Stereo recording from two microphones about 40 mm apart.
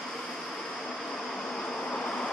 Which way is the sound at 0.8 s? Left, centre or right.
Centre.